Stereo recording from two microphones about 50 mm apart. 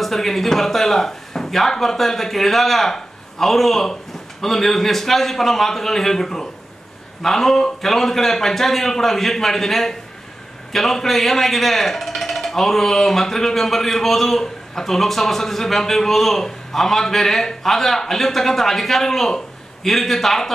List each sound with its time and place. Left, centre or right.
0.0 s speech: centre